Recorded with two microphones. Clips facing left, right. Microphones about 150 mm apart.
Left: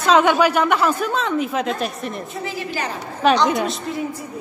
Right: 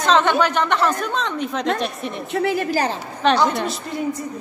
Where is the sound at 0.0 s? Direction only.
10° left (ahead or behind).